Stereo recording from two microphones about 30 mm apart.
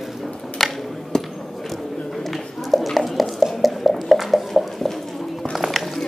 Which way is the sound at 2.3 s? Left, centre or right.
Centre.